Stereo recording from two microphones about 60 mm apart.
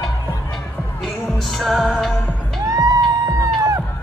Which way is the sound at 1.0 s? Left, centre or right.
Centre.